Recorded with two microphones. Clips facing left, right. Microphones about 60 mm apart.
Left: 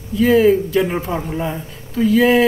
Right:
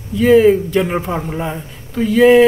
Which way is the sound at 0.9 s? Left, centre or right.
Centre.